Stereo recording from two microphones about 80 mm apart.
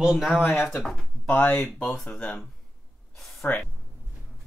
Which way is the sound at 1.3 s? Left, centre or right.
Left.